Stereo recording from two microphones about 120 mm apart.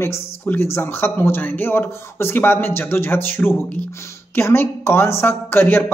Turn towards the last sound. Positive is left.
turn(degrees=15)  # may be behind; listen again after turning